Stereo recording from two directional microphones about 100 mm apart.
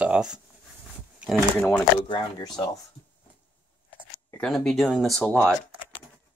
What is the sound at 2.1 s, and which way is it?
Speech, 40° left (ahead or behind).